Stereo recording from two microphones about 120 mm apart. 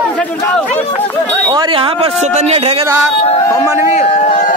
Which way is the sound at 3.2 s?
25° left (ahead or behind).